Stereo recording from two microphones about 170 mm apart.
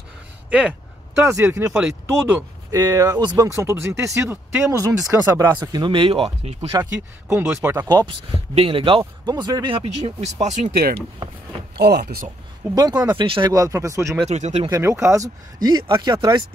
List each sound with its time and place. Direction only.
0.5 s speech: 5° right (ahead or behind); by 6.6 s 35° right (ahead or behind)
6.7 s speech: 15° right (ahead or behind)
7.9 s speech: 25° right (ahead or behind)
11.7 s speech: 70° right (ahead or behind)
12.7 s speech: 25° right (ahead or behind)
14.3 s speech: 40° right (ahead or behind)
14.7 s speech: 15° right (ahead or behind)